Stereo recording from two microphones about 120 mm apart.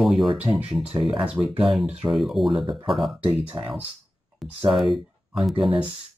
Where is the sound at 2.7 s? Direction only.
45° right (ahead or behind).